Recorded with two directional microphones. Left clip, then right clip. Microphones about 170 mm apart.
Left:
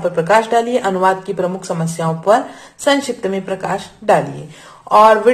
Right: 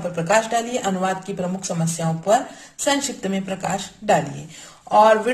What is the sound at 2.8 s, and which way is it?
A woman's voice, 10° right (ahead or behind).